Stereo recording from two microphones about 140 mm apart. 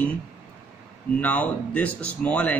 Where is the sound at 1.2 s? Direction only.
10° left (ahead or behind).